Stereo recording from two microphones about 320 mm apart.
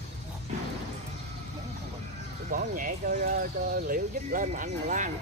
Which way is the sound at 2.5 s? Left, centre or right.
Right.